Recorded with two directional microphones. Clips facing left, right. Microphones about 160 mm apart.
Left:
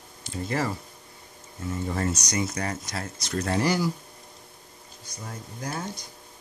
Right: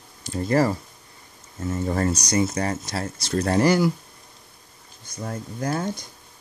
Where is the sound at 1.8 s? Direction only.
45° right (ahead or behind).